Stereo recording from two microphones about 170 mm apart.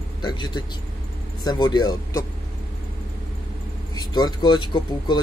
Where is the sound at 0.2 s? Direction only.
25° left (ahead or behind).